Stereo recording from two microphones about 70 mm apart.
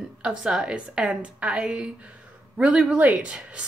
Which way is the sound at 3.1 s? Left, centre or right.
Centre.